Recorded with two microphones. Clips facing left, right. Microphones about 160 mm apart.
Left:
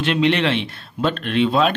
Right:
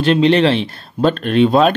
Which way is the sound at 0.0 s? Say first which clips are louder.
Right 6 dB; 35° right (ahead or behind).